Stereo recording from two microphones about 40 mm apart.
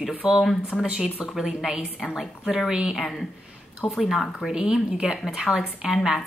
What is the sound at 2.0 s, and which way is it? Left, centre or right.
A woman's voice, centre.